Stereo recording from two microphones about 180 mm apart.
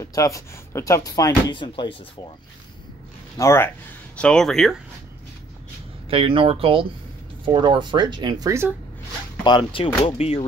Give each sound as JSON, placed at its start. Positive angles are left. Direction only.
{"t": 0.0, "sound": "speech", "side_deg": 20}
{"t": 3.3, "sound": "speech", "side_deg": 15}
{"t": 4.2, "sound": "speech", "side_deg": 5}
{"t": 6.0, "sound": "speech", "side_deg": -30}
{"t": 9.4, "sound": "speech", "side_deg": 25}